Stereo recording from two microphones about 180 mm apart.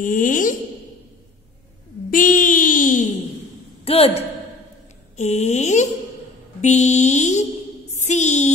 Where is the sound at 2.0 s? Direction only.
50° left (ahead or behind).